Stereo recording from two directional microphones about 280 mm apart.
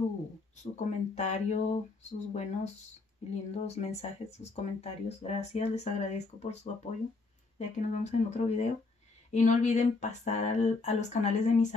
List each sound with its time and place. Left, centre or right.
0.6 s speech: left